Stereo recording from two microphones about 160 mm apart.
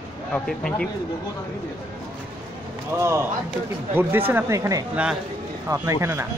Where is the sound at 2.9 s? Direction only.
15° right (ahead or behind).